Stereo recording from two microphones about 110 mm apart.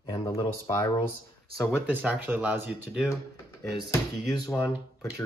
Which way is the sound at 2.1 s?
15° right (ahead or behind).